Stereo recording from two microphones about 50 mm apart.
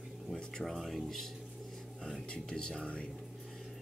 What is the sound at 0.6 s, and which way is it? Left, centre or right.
Speech, centre.